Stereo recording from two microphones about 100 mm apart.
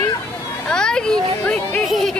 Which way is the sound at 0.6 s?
10° left (ahead or behind).